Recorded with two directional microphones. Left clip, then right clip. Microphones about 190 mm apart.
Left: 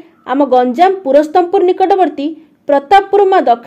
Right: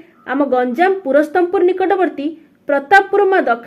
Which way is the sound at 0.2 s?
35° left (ahead or behind).